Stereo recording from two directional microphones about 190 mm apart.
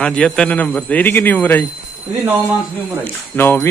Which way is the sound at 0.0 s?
5° left (ahead or behind).